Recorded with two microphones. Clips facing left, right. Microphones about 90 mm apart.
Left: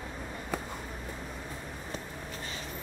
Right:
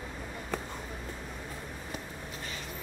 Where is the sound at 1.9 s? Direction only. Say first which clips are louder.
Left 1 dB; 35° left (ahead or behind).